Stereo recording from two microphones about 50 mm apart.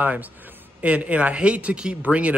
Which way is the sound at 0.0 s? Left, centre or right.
Right.